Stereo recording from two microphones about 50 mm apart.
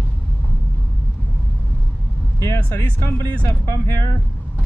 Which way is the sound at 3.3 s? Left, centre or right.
Left.